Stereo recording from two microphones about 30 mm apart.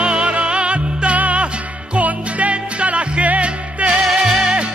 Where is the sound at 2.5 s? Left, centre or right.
Right.